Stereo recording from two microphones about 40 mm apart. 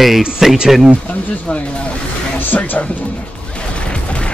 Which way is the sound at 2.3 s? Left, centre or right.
Left.